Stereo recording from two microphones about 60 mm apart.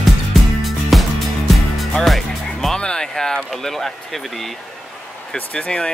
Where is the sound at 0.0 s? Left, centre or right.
Centre.